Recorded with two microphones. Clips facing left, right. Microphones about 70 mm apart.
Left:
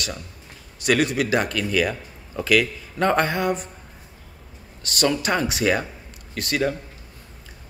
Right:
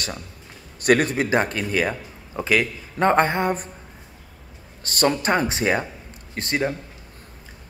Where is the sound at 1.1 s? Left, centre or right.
Right.